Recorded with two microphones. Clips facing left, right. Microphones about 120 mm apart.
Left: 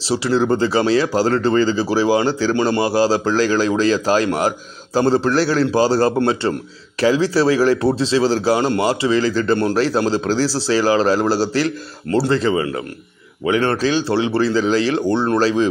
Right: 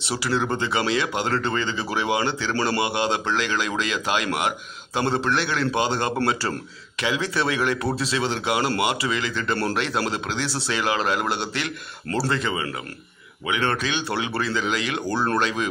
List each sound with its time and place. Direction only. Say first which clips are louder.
0.0 s a man's voice: left 7 dB; 30° left (ahead or behind)
2.5 s speech: left 4 dB; 20° left (ahead or behind)
2.8 s a man's voice: left 8 dB; 35° left (ahead or behind)